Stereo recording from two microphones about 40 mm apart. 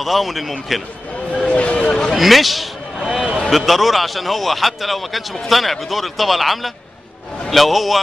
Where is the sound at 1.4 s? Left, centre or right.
Left.